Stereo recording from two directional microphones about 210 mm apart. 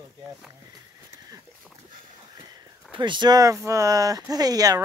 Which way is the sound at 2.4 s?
20° right (ahead or behind).